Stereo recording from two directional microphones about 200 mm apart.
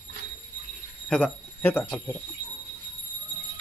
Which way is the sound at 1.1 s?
10° left (ahead or behind).